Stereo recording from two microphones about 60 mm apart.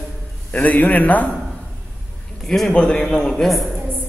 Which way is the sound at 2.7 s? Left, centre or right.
Left.